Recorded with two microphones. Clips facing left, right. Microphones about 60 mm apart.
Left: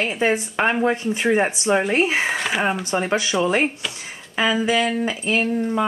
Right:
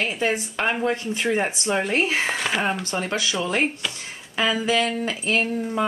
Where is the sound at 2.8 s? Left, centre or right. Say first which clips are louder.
Left 4 dB; centre.